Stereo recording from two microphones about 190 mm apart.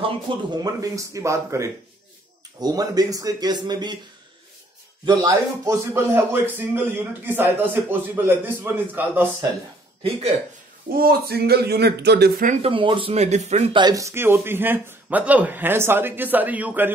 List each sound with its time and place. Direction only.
0.6 s speech: 20° right (ahead or behind)
5.0 s speech: 15° right (ahead or behind)
11.0 s speech: 55° right (ahead or behind)
12.4 s speech: 30° right (ahead or behind)
13.7 s speech: 20° right (ahead or behind)